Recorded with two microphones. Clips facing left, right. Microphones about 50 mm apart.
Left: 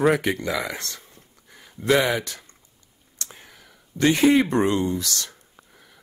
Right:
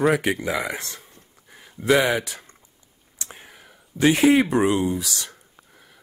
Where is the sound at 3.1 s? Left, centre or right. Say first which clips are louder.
Right 1 dB; right.